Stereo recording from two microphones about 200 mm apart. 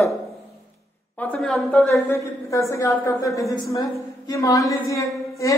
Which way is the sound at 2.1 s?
15° left (ahead or behind).